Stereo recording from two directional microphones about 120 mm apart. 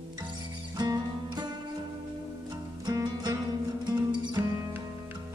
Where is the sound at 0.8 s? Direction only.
35° right (ahead or behind).